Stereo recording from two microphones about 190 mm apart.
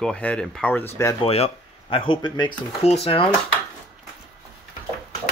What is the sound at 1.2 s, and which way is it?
Speech, 30° left (ahead or behind).